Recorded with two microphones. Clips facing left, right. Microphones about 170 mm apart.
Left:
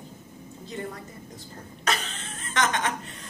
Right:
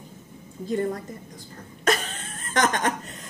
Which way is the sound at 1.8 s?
50° right (ahead or behind).